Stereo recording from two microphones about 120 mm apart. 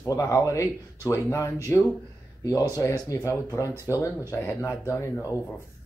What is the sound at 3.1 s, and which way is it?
Speech, 30° left (ahead or behind).